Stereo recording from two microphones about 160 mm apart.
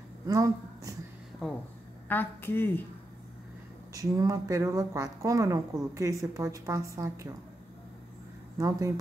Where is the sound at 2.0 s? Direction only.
10° left (ahead or behind).